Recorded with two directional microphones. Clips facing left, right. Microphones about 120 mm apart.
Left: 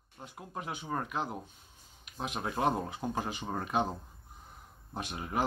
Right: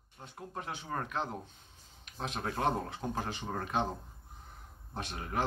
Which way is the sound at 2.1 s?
15° left (ahead or behind).